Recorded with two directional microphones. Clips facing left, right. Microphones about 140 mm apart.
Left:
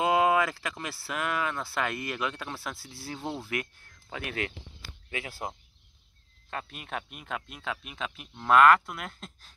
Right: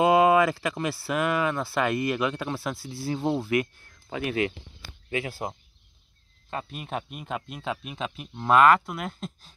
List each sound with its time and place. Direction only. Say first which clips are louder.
0.0 s speech: right 5 dB; 10° right (ahead or behind)
5.1 s speech: right 6 dB; 25° right (ahead or behind)
6.5 s speech: right 4 dB; 25° right (ahead or behind)